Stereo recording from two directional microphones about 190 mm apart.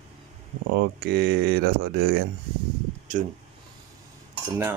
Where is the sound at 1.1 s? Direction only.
55° right (ahead or behind).